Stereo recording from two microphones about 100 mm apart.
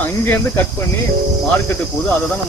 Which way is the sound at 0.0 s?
20° left (ahead or behind).